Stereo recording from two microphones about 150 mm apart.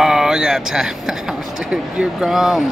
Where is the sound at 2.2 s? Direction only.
5° right (ahead or behind).